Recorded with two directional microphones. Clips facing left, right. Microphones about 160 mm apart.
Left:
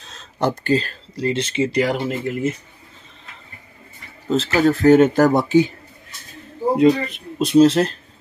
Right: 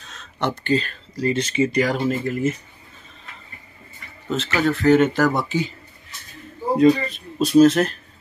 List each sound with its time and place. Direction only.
0.0 s a sound: 35° left (ahead or behind)
1.2 s speech: 25° left (ahead or behind)
4.3 s speech: 35° left (ahead or behind)
6.7 s speech: 20° left (ahead or behind)